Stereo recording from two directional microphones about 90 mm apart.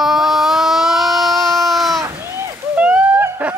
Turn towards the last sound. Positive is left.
turn(degrees=-20)  # may be behind; listen again after turning